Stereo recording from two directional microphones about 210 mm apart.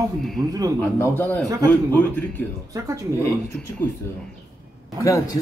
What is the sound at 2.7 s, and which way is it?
Speech, 15° right (ahead or behind).